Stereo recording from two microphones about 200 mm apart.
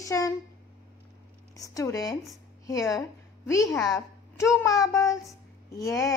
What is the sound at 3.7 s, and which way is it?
Speech, 5° left (ahead or behind).